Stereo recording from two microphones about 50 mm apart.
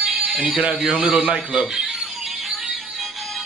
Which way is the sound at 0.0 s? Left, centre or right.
Centre.